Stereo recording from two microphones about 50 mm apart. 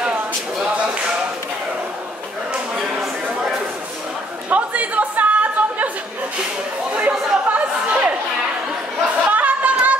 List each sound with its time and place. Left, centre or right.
4.5 s chatter: right
7.0 s chatter: right
9.3 s a sound: right